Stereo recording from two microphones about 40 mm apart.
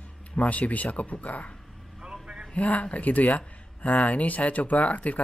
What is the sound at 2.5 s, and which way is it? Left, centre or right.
Speech, left.